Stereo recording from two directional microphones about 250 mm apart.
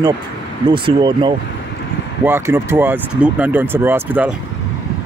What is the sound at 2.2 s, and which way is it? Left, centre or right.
Speech, centre.